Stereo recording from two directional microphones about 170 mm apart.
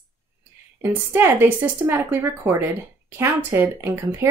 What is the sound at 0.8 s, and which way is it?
Speech, 15° right (ahead or behind).